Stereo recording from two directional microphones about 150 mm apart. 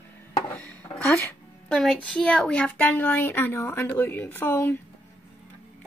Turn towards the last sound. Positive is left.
turn(degrees=15)  # may be behind; listen again after turning